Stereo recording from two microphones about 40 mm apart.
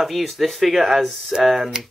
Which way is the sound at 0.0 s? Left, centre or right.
Centre.